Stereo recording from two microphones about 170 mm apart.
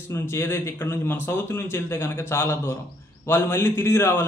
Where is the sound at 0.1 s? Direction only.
15° left (ahead or behind).